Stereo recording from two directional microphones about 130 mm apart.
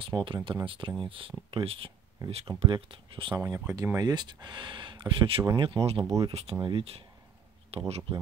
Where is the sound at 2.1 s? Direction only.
30° right (ahead or behind).